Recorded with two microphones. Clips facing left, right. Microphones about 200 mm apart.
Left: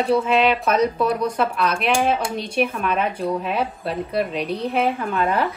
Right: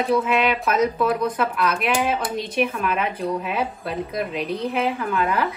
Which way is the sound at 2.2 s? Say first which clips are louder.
Left 1 dB; 10° left (ahead or behind).